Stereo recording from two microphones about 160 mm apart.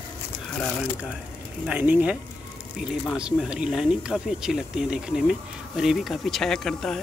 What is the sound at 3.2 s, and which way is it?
Speech, 5° right (ahead or behind).